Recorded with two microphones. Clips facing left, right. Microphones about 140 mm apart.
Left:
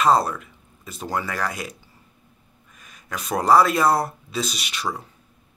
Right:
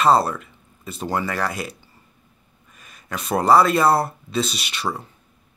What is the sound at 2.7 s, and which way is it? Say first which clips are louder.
Speech: right 2 dB; centre (ahead or behind).